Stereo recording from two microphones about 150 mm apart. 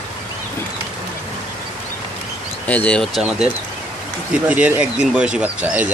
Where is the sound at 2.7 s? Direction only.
10° left (ahead or behind).